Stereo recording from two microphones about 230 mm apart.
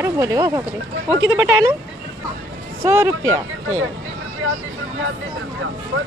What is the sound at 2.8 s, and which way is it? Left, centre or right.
Speech, centre.